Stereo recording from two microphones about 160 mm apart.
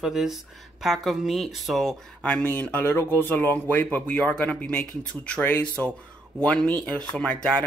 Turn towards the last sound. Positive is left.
turn(degrees=5)  # may be behind; listen again after turning